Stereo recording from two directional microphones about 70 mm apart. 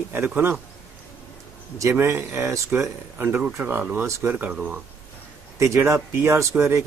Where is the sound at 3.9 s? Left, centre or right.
Right.